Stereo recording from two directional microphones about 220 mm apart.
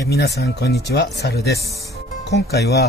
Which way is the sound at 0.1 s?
45° left (ahead or behind).